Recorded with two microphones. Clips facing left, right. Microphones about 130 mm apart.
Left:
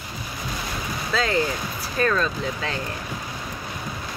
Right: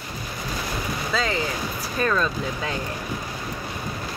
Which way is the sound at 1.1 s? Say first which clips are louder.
Left 3 dB; centre (ahead or behind).